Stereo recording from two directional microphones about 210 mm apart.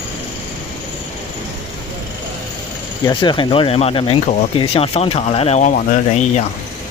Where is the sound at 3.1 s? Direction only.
20° left (ahead or behind).